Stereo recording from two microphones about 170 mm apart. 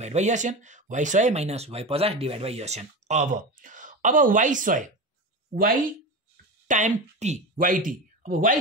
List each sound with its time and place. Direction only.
0.0 s speech: 40° right (ahead or behind)